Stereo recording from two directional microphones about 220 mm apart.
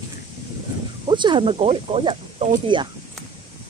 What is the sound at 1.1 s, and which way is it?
Speech, 20° right (ahead or behind).